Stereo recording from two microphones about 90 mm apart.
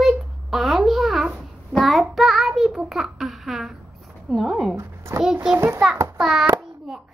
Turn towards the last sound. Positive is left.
turn(degrees=0)  # may be behind; listen again after turning